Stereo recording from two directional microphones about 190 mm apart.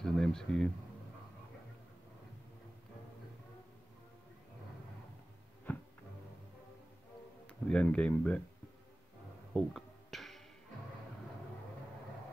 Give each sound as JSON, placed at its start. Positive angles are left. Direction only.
{"t": 0.0, "sound": "speech", "side_deg": 0}
{"t": 5.7, "sound": "music", "side_deg": 10}
{"t": 7.7, "sound": "speech", "side_deg": 5}
{"t": 9.5, "sound": "music", "side_deg": 0}